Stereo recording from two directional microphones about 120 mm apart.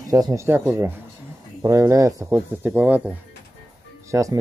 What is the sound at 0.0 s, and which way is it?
Speech, 30° right (ahead or behind).